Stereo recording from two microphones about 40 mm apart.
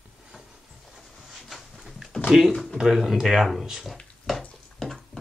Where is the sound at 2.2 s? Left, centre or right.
Centre.